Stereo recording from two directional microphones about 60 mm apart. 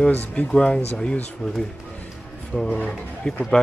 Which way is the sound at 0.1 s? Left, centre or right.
Left.